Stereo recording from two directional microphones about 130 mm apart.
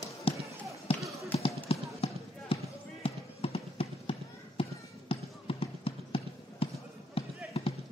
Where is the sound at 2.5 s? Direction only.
45° left (ahead or behind).